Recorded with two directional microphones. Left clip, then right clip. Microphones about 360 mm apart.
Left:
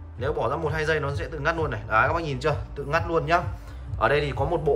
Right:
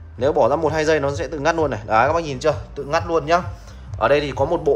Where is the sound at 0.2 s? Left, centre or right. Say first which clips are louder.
Right 10 dB; centre.